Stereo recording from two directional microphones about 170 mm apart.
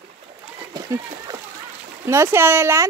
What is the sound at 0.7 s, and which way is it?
Splash, 20° right (ahead or behind).